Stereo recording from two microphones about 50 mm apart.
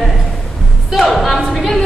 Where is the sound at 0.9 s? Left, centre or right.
Centre.